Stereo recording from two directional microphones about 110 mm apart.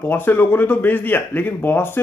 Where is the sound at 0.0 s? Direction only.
15° left (ahead or behind).